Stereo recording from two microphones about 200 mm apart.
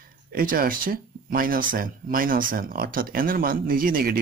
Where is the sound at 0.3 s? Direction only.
45° right (ahead or behind).